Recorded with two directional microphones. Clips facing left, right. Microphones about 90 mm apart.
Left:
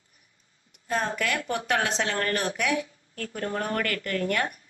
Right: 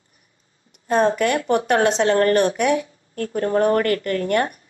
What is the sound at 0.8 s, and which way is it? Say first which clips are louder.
Speech: right 10 dB; 30° right (ahead or behind).